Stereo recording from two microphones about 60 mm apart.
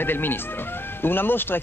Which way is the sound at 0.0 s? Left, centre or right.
Left.